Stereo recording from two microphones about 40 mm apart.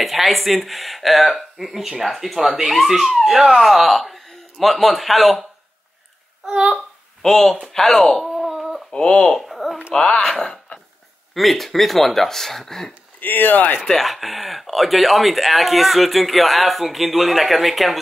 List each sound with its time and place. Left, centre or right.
0.0 s speech: centre
6.5 s speech: centre
7.2 s speech: centre
8.2 s a sound: centre
8.9 s speech: left
9.4 s a sound: centre
9.9 s speech: left
10.2 s speech: centre
13.2 s speech: left
13.8 s speech: centre